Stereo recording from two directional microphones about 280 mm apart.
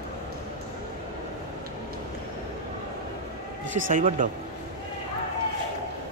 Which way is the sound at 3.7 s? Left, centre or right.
Right.